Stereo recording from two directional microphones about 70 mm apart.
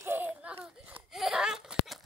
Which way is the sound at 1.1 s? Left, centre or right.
Centre.